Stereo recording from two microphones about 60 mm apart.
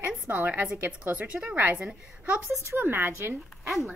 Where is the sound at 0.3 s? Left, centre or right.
Right.